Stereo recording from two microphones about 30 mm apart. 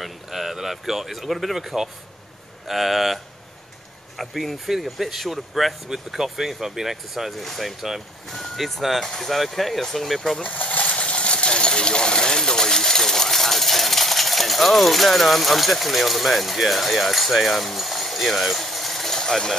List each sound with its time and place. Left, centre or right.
0.0 s speech: centre
4.2 s speech: centre
7.3 s speech: centre
10.4 s coin: left; by 17.7 s centre
17.7 s engine: centre